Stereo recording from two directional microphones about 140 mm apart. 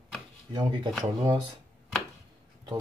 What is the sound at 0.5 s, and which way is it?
Speech, 35° right (ahead or behind).